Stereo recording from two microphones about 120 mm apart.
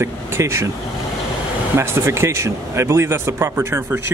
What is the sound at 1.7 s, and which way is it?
Speech, 20° right (ahead or behind).